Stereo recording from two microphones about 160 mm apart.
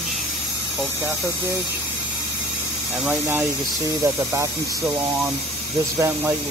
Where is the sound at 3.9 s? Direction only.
20° right (ahead or behind).